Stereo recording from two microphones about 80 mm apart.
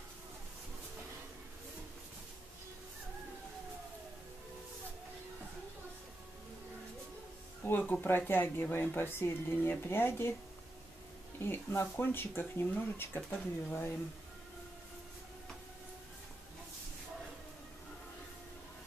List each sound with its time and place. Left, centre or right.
7.8 s speech: left
11.4 s speech: left